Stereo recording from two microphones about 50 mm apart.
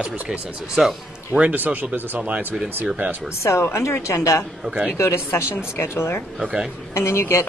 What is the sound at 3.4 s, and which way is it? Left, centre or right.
Speech, left.